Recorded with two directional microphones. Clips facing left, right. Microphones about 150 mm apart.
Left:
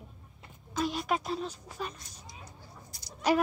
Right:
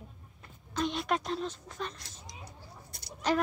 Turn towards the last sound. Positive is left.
turn(degrees=-60)  # may be behind; listen again after turning